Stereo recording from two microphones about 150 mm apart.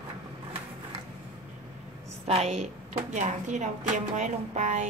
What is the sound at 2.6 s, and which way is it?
Speech, 50° right (ahead or behind).